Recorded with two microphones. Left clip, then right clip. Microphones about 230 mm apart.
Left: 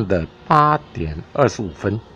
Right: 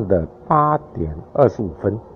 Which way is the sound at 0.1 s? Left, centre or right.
Left.